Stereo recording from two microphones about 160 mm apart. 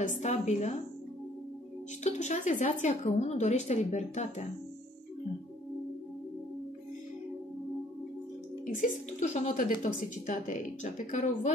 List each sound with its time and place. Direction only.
0.0 s a woman's voice: 50° left (ahead or behind)
2.0 s a woman's voice: 45° left (ahead or behind)
8.8 s a woman's voice: 45° left (ahead or behind)